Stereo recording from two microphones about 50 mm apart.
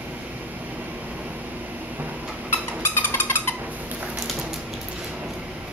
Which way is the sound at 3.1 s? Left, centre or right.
Left.